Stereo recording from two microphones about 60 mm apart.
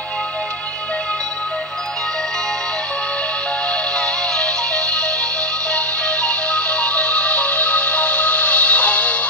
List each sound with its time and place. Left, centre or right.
3.9 s music: centre